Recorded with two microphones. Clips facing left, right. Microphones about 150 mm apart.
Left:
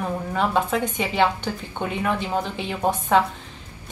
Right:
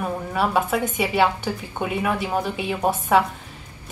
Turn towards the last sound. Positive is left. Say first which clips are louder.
# right 1 dB
turn(degrees=-10)  # may be behind; listen again after turning